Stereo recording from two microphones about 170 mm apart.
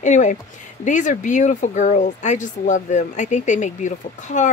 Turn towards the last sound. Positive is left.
turn(degrees=45)  # may be behind; listen again after turning